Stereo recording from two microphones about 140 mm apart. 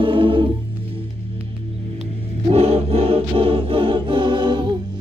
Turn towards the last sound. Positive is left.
turn(degrees=-35)  # may be behind; listen again after turning